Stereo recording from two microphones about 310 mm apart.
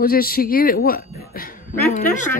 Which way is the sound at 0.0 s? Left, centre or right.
Left.